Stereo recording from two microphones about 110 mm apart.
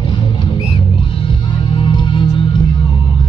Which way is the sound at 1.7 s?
45° left (ahead or behind).